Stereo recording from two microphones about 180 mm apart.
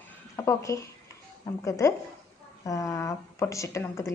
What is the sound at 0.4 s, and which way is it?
A woman's voice, 15° left (ahead or behind).